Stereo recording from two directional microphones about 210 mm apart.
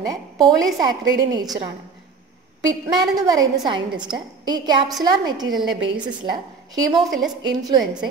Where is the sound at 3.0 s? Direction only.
20° right (ahead or behind).